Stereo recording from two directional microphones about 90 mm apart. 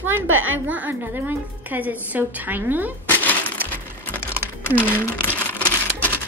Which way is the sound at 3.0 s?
20° left (ahead or behind).